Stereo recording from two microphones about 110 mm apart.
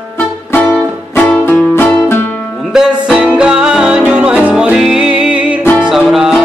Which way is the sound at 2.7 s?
5° right (ahead or behind).